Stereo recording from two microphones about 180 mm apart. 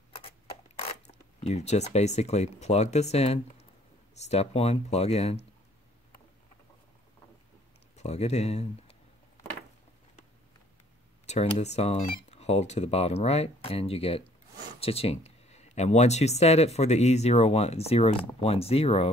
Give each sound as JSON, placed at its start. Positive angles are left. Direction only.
{"t": 0.7, "sound": "speech", "side_deg": 35}
{"t": 7.9, "sound": "speech", "side_deg": 35}
{"t": 11.2, "sound": "speech", "side_deg": 35}